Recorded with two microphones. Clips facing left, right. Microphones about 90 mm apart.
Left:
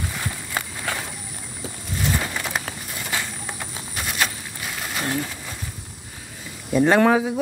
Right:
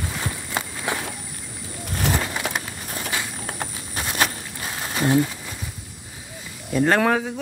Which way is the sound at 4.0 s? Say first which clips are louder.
Right 2 dB; 35° right (ahead or behind).